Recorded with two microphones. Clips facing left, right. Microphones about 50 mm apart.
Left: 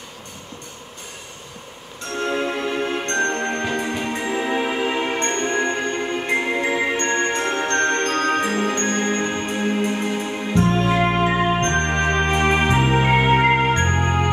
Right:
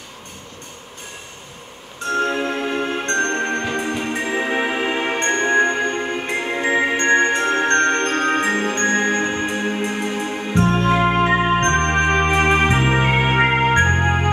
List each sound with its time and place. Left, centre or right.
2.3 s music: right
10.9 s music: centre
11.2 s music: right